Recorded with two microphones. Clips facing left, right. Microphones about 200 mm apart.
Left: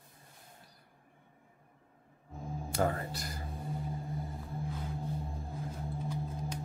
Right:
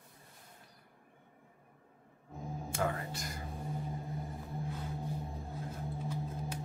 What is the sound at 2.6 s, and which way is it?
Music, 35° left (ahead or behind).